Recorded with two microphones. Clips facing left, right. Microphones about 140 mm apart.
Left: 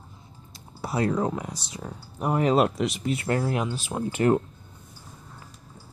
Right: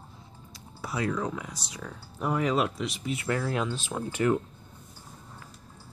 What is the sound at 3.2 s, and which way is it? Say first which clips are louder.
Speech: left 2 dB; 35° left (ahead or behind).